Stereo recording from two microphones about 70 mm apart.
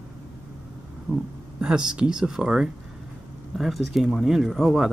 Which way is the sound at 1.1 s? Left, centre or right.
Right.